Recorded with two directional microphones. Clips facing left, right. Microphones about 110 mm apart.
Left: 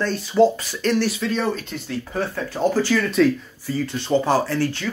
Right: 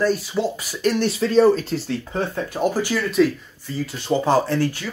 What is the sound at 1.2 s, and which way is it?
Speech, 35° right (ahead or behind).